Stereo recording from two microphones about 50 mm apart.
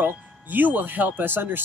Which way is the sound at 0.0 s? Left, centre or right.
Right.